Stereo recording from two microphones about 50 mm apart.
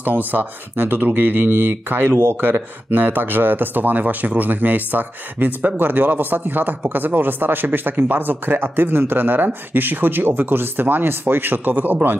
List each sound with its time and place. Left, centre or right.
0.0 s a man's voice: right